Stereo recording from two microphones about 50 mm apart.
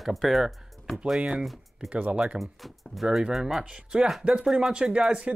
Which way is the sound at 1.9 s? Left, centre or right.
Right.